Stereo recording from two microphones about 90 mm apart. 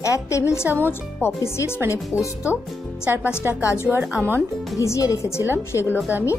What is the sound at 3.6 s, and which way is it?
Speech, 35° left (ahead or behind).